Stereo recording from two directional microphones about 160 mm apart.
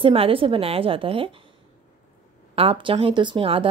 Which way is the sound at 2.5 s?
35° right (ahead or behind).